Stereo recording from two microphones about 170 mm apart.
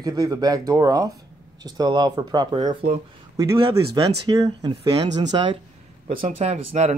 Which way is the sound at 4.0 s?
25° right (ahead or behind).